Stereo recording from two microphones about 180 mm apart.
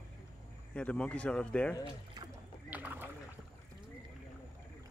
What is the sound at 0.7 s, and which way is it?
Speech, 5° left (ahead or behind).